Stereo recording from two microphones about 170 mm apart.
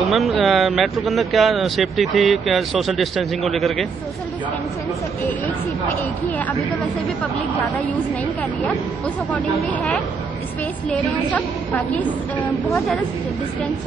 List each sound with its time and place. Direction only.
0.1 s speech: centre (ahead or behind)
9.0 s a woman's voice: 5° left (ahead or behind)